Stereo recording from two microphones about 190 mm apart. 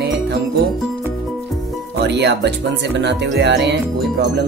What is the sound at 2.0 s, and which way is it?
Music, 60° right (ahead or behind).